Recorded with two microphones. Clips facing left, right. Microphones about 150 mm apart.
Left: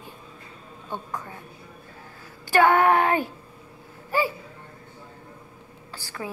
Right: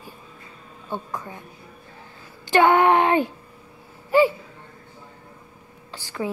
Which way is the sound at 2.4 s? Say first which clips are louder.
Right 2 dB; 20° right (ahead or behind).